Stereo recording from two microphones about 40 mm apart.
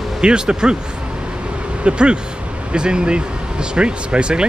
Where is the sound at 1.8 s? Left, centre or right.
Right.